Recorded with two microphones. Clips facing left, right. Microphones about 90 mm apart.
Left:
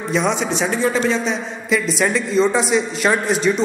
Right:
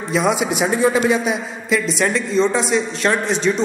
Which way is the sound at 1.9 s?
Centre (ahead or behind).